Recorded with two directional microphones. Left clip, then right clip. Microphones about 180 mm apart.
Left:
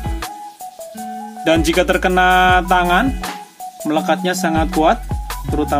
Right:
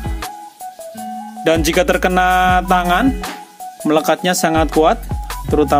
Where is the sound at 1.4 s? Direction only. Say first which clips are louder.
Right 1 dB; 45° right (ahead or behind).